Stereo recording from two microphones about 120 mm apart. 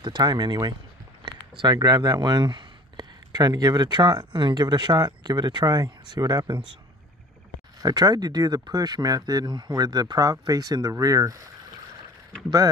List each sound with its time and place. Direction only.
0.0 s speech: 35° right (ahead or behind)
7.8 s speech: 30° right (ahead or behind)